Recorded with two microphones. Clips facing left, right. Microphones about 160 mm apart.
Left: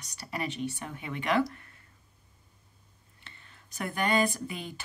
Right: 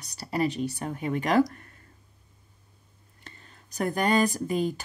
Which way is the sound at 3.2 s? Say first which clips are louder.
Right 5 dB; 40° right (ahead or behind).